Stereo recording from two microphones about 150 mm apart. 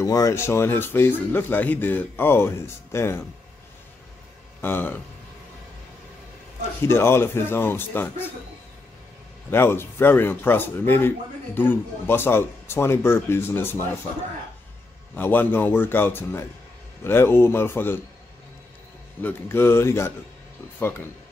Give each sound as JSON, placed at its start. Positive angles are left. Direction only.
{"t": 0.0, "sound": "speech", "side_deg": 20}
{"t": 4.6, "sound": "speech", "side_deg": 15}
{"t": 6.9, "sound": "speech", "side_deg": 15}
{"t": 9.5, "sound": "speech", "side_deg": 15}
{"t": 15.1, "sound": "speech", "side_deg": 15}
{"t": 19.2, "sound": "speech", "side_deg": 15}